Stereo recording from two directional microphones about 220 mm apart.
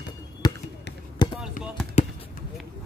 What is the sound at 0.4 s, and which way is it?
Basketball bounce, 15° left (ahead or behind).